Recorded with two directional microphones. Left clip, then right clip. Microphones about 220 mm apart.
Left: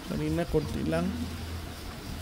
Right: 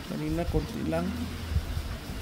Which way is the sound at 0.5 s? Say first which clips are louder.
Left 7 dB; 25° left (ahead or behind).